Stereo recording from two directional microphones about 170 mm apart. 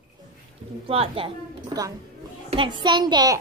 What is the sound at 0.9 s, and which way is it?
A child's voice, 35° right (ahead or behind).